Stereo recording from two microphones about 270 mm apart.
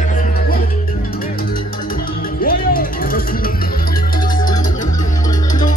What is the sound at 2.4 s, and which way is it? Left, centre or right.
Music, left.